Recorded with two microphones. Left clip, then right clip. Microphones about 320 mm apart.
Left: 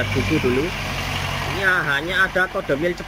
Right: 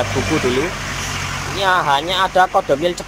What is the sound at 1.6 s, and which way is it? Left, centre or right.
Speech, right.